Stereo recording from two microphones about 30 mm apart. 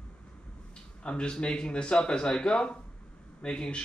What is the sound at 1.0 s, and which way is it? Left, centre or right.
Speech, left.